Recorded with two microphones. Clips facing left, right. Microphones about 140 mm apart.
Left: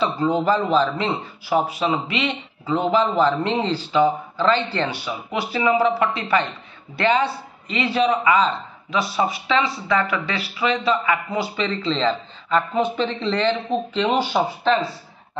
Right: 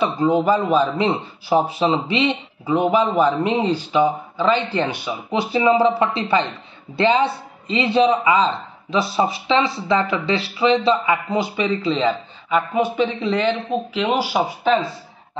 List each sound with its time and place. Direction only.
0.0 s a man's voice: 15° right (ahead or behind)